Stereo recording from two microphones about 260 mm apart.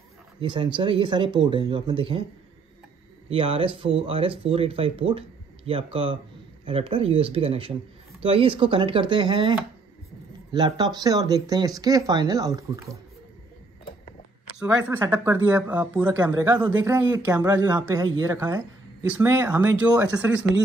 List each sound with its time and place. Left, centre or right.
0.4 s speech: centre
3.3 s speech: right
14.9 s speech: centre